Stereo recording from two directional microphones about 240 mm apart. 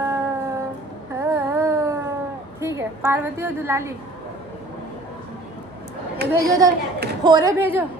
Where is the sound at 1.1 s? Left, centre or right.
Centre.